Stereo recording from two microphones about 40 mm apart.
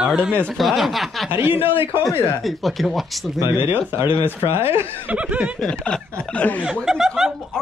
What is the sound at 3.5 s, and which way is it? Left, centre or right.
Speech, right.